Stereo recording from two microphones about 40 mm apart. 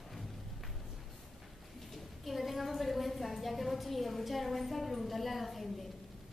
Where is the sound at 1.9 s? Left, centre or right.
Centre.